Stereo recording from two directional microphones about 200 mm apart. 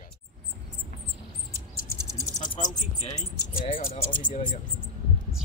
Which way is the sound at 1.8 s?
20° left (ahead or behind).